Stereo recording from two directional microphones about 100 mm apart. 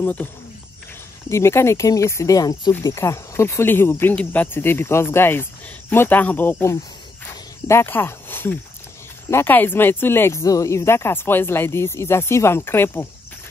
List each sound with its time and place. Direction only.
0.0 s speech: 15° left (ahead or behind)
1.3 s speech: 25° left (ahead or behind)